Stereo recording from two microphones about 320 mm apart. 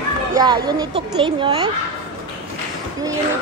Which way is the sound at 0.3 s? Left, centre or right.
Centre.